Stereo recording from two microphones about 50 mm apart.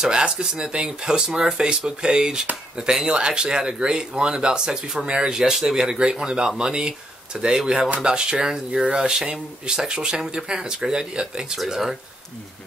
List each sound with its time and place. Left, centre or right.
0.0 s speech: centre